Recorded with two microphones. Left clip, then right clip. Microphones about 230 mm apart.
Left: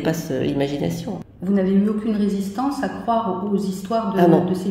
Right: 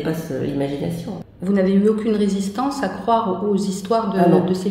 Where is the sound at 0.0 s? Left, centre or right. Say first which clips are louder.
Left 2 dB; left.